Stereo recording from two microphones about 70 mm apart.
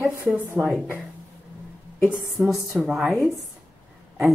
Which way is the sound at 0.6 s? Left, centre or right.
Right.